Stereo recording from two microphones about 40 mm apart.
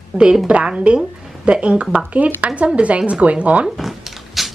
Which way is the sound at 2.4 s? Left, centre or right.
Right.